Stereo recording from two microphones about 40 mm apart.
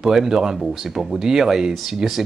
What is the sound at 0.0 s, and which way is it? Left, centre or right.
Speech, centre.